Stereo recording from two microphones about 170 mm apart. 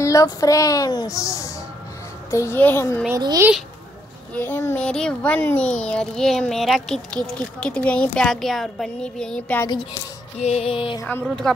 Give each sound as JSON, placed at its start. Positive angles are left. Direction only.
{"t": 0.0, "sound": "a woman's voice", "side_deg": 20}
{"t": 3.2, "sound": "a child's voice", "side_deg": -25}
{"t": 4.3, "sound": "speech", "side_deg": 10}
{"t": 10.4, "sound": "music", "side_deg": 35}
{"t": 11.0, "sound": "a child's voice", "side_deg": 15}